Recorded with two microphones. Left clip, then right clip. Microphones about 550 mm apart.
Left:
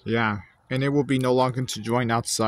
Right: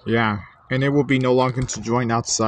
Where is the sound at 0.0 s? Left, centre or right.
Left.